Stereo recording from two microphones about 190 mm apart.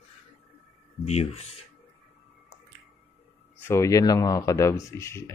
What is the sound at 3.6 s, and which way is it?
Speech, 15° left (ahead or behind).